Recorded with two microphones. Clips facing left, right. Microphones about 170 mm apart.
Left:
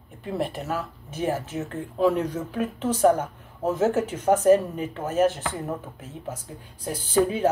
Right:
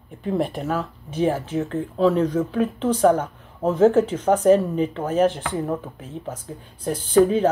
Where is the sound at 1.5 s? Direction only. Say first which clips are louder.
Right 7 dB; 30° right (ahead or behind).